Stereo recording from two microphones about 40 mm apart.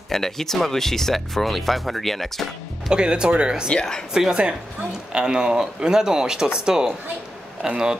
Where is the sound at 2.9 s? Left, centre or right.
Right.